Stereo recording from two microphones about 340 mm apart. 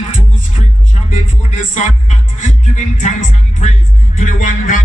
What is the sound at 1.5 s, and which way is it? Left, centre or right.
Music, left.